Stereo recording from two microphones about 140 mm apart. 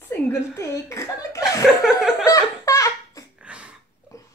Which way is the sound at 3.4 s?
5° right (ahead or behind).